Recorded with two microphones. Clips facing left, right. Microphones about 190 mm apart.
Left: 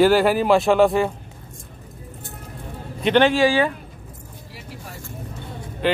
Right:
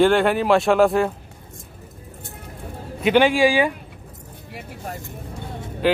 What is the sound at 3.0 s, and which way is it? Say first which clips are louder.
Speech: even; 10° right (ahead or behind).